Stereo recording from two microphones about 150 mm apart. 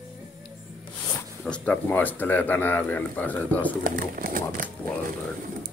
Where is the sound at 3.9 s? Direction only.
70° right (ahead or behind).